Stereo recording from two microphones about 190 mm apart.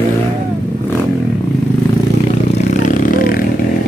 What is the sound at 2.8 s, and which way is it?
Vehicle, 45° left (ahead or behind).